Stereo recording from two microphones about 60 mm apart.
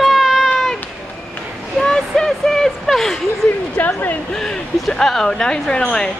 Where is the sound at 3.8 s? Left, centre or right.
Left.